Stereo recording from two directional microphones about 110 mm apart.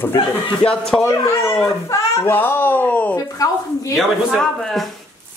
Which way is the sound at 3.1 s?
30° left (ahead or behind).